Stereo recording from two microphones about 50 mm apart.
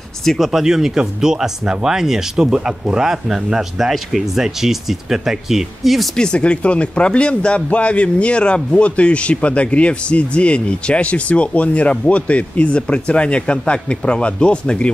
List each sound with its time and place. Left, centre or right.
0.2 s speech: centre
0.5 s speech: centre
6.1 s a man's voice: centre